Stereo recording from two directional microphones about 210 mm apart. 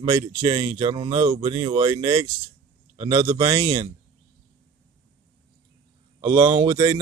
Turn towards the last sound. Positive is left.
turn(degrees=-15)  # may be behind; listen again after turning